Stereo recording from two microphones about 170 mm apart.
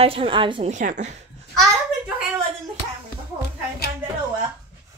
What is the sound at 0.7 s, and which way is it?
Speech, 45° right (ahead or behind).